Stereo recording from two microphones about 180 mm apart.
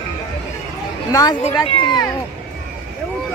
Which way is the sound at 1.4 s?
25° left (ahead or behind).